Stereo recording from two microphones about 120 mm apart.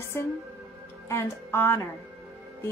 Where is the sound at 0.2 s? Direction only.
20° left (ahead or behind).